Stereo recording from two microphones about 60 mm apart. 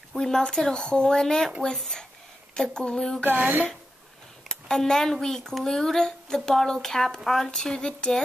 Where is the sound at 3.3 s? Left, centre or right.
Right.